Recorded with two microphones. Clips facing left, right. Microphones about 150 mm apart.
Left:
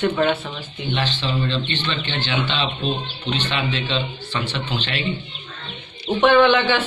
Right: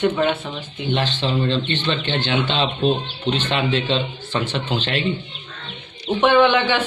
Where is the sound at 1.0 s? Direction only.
45° right (ahead or behind).